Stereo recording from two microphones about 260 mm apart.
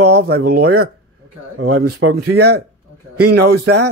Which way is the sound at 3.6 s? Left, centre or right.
Right.